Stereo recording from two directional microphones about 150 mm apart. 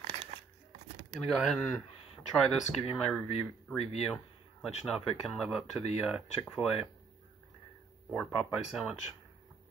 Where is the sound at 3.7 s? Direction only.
45° left (ahead or behind).